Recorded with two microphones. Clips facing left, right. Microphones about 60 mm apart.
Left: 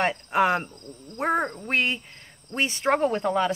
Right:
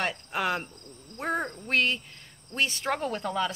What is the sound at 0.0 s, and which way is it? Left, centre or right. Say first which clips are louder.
Speech: left 7 dB; left.